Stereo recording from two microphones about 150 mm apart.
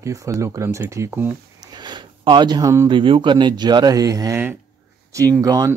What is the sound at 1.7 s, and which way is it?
Speech, 30° right (ahead or behind).